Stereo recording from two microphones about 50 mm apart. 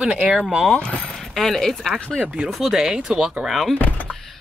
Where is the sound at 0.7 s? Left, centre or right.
Left.